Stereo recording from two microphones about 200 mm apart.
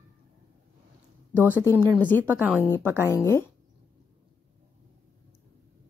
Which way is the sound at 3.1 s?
15° left (ahead or behind).